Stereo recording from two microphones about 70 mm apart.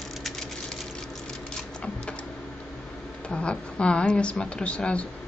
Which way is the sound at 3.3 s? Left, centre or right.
Centre.